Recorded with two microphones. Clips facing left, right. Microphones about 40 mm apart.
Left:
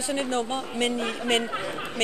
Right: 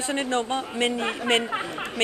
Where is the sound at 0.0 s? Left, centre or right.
Right.